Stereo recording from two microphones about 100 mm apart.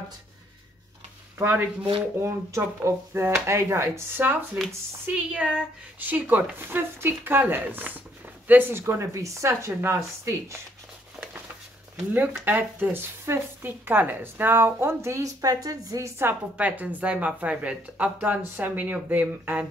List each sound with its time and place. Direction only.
1.4 s a woman's voice: 20° right (ahead or behind)
8.8 s a woman's voice: 30° right (ahead or behind)
12.1 s a woman's voice: 15° right (ahead or behind); by 16.1 s 35° right (ahead or behind)
16.2 s a woman's voice: 20° right (ahead or behind)